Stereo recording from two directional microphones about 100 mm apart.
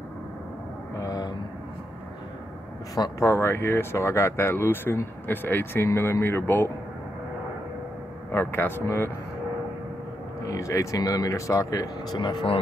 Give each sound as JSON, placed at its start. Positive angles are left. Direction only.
{"t": 0.9, "sound": "vehicle", "side_deg": 35}
{"t": 2.9, "sound": "speech", "side_deg": 35}
{"t": 8.3, "sound": "speech", "side_deg": 25}
{"t": 10.4, "sound": "speech", "side_deg": 35}
{"t": 12.2, "sound": "speech", "side_deg": 50}